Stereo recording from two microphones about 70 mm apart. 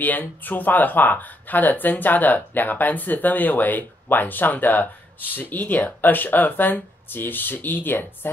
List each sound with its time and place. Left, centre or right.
0.0 s speech: left